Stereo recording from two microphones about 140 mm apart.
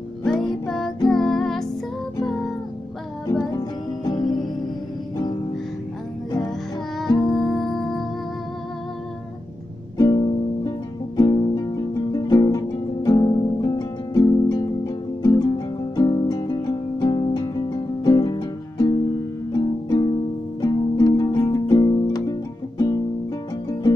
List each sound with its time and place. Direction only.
0.2 s music: 5° left (ahead or behind)
3.5 s music: 30° left (ahead or behind)
7.2 s music: 5° left (ahead or behind)
9.9 s music: 25° left (ahead or behind)